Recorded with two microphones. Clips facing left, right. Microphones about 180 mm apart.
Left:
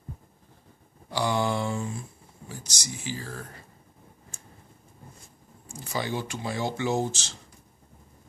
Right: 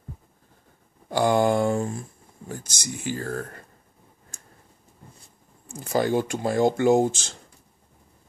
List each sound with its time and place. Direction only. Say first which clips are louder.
1.1 s speech: right 6 dB; 50° right (ahead or behind)
4.3 s tick-tock: left 1 dB; 40° right (ahead or behind)
5.7 s speech: right 8 dB; 50° right (ahead or behind)